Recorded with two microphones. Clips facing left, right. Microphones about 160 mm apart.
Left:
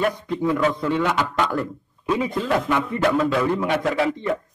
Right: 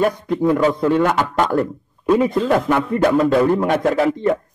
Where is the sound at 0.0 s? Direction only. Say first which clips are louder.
Right 5 dB; 45° right (ahead or behind).